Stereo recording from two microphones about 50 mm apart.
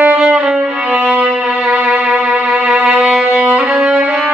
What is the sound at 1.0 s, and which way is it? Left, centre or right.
Music, centre.